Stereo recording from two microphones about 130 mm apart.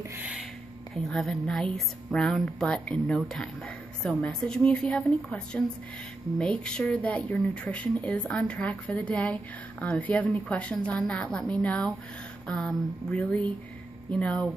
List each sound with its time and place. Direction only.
0.0 s speech: 15° right (ahead or behind)
0.9 s speech: 5° left (ahead or behind)